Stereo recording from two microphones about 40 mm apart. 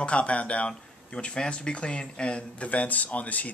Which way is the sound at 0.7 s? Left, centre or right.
Left.